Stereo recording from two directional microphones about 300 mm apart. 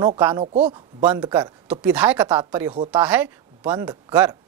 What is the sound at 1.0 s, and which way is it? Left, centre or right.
A woman's voice, centre.